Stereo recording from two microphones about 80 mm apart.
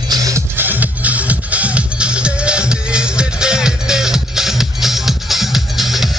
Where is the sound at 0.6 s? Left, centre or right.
Right.